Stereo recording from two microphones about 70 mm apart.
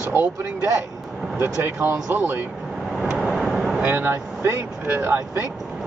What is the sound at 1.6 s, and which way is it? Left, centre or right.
Speech, right.